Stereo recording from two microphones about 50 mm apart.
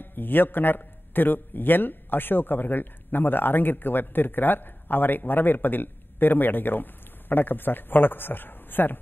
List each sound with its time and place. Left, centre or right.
0.0 s a man's voice: left